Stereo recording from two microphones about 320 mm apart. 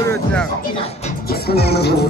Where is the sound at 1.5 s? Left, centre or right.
Left.